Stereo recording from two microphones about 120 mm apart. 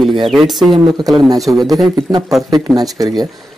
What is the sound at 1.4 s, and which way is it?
Speech, centre (ahead or behind).